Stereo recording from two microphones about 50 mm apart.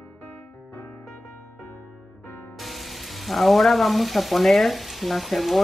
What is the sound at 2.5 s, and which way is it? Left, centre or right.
Frying, centre.